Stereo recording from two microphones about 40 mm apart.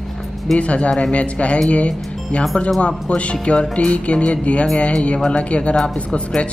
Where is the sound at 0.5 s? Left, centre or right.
Left.